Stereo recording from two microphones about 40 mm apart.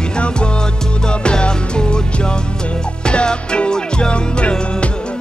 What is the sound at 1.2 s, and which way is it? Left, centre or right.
Music, left.